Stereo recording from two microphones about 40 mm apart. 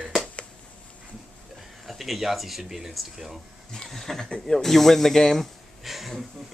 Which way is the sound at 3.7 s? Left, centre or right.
Centre.